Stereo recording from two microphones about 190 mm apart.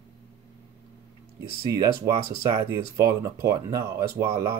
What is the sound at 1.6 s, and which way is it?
Speech, 15° right (ahead or behind).